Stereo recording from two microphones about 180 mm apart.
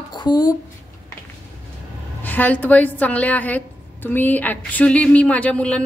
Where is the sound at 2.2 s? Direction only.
10° left (ahead or behind).